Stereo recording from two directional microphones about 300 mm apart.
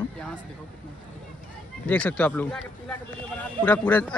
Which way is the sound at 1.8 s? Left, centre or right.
Centre.